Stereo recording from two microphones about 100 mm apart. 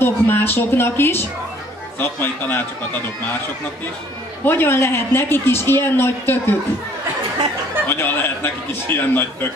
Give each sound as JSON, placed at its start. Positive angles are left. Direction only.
{"t": 0.0, "sound": "a woman's voice", "side_deg": 20}
{"t": 4.5, "sound": "a woman's voice", "side_deg": 25}
{"t": 7.9, "sound": "a woman's voice", "side_deg": 20}